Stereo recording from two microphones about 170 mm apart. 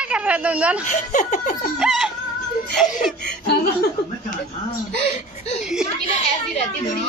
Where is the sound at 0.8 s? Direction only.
45° left (ahead or behind).